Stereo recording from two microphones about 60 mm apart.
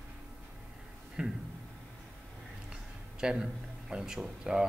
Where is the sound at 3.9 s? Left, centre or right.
Centre.